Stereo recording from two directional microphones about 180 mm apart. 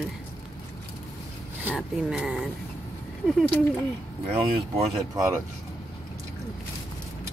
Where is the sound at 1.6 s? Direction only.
5° right (ahead or behind).